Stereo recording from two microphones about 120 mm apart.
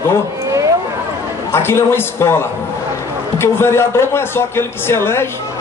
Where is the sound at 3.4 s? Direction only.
20° left (ahead or behind).